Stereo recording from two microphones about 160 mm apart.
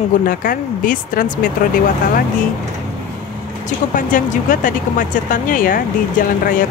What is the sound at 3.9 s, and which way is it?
Speech, 55° left (ahead or behind).